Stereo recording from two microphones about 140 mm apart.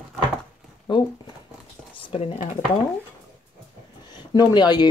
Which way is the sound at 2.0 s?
45° left (ahead or behind).